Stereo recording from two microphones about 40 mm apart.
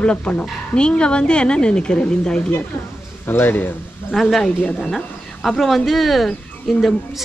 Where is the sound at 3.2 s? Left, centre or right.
Left.